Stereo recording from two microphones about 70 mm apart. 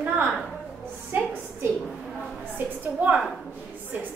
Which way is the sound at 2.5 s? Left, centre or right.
Right.